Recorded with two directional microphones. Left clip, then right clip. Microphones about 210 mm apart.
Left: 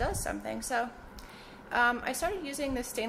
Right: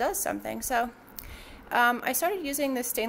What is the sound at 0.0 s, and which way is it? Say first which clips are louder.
A woman's voice: right 5 dB; 40° right (ahead or behind).